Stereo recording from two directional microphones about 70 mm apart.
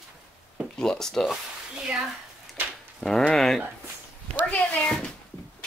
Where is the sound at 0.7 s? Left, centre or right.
Centre.